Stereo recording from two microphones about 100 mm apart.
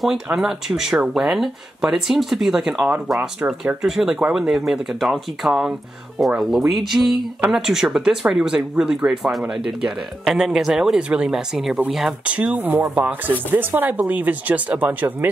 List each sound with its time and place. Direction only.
0.0 s speech: 5° right (ahead or behind)